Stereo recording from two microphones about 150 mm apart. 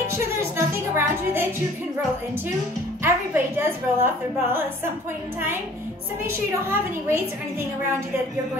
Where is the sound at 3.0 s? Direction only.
15° right (ahead or behind).